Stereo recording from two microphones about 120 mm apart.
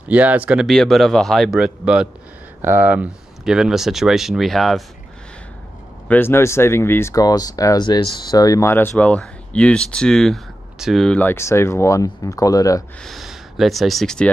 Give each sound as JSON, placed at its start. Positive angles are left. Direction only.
{"t": 0.1, "sound": "speech", "side_deg": -10}
{"t": 0.7, "sound": "speech", "side_deg": 0}
{"t": 6.0, "sound": "speech", "side_deg": 15}
{"t": 11.1, "sound": "speech", "side_deg": 20}
{"t": 13.0, "sound": "speech", "side_deg": 0}